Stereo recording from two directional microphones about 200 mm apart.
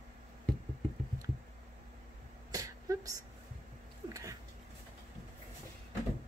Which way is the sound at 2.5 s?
15° right (ahead or behind).